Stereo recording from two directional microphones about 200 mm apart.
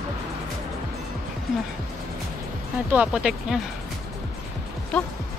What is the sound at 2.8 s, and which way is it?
Speech, 5° right (ahead or behind).